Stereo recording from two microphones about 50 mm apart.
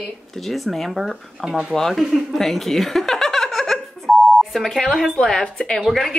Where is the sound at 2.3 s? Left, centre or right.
Centre.